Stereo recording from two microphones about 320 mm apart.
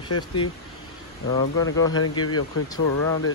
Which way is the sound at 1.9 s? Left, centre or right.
Left.